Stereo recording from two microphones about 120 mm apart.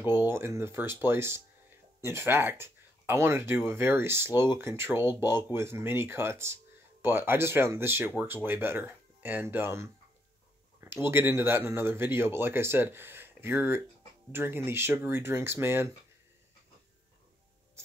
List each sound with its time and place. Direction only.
0.0 s speech: 15° right (ahead or behind)